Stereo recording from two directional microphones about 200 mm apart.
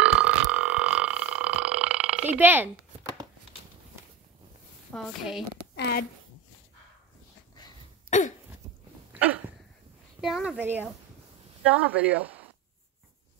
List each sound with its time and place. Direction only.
0.0 s burping: 5° right (ahead or behind)
4.9 s a woman's voice: centre (ahead or behind)
5.8 s speech: 50° left (ahead or behind)
8.1 s throat clearing: 35° left (ahead or behind)
9.1 s a sound: 5° right (ahead or behind)
10.2 s a woman's voice: centre (ahead or behind)
11.9 s speech: 5° right (ahead or behind)